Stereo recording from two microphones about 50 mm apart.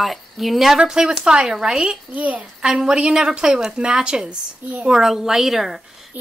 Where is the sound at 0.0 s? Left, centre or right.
Centre.